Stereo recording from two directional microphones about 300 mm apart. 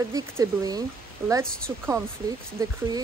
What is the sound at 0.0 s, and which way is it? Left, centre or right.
Speech, centre.